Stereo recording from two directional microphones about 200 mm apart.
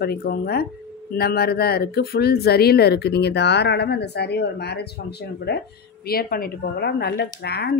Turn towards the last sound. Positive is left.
turn(degrees=55)  # may be behind; listen again after turning